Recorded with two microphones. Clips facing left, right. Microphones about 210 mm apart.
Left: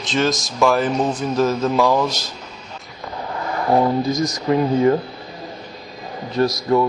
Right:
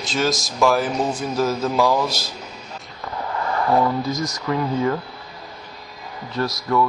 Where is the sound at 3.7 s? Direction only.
15° left (ahead or behind).